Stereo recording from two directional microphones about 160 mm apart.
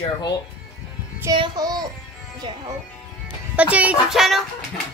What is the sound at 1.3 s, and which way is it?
Child singing, 25° right (ahead or behind).